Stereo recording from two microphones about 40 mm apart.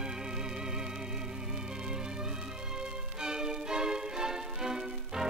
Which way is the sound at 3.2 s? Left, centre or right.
Centre.